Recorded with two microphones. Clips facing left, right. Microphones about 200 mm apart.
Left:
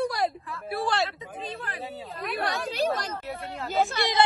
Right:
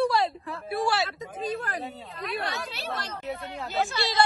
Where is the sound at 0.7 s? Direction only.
5° right (ahead or behind).